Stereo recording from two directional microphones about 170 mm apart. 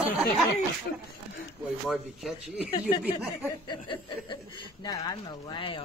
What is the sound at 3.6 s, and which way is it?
Chuckle, 25° left (ahead or behind).